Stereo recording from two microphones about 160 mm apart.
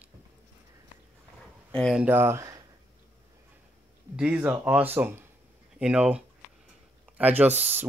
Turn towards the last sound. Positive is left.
turn(degrees=-15)  # may be behind; listen again after turning